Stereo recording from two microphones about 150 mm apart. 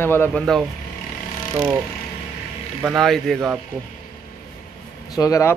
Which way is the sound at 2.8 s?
Centre (ahead or behind).